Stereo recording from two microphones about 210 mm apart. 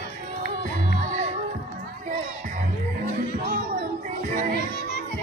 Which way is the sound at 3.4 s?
45° right (ahead or behind).